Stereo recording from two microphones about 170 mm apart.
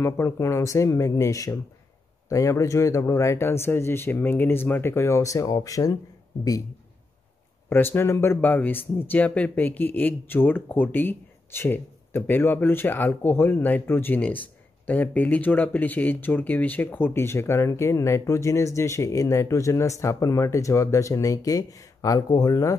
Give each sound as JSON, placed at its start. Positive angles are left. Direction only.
{"t": 0.0, "sound": "speech", "side_deg": 15}
{"t": 7.7, "sound": "speech", "side_deg": 15}